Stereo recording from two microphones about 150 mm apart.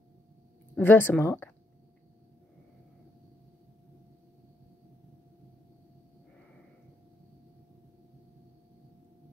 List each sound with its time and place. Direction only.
0.7 s speech: 15° left (ahead or behind)